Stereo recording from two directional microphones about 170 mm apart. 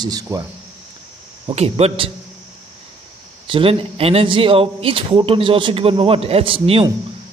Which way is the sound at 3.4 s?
30° right (ahead or behind).